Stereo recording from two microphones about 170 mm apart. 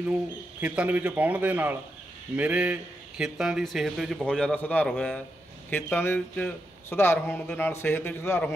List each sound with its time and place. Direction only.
0.6 s a man's voice: 10° right (ahead or behind); by 8.5 s 15° left (ahead or behind)